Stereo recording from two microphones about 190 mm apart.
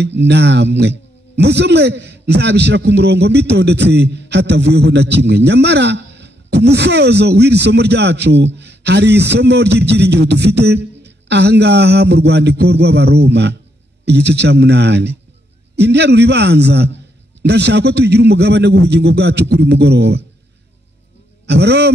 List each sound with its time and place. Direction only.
0.0 s a man's voice: 65° right (ahead or behind)
21.5 s a man's voice: 60° right (ahead or behind)